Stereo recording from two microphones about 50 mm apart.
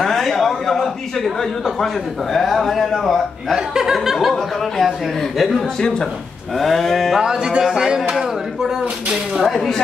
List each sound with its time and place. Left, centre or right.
0.0 s a sound: centre
2.3 s a man's voice: centre
3.5 s a man's voice: centre
5.8 s speech: centre
6.6 s a man's voice: centre
7.2 s speech: centre
9.4 s a man's voice: centre